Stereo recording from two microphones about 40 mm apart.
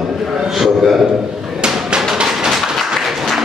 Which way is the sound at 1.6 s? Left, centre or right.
Right.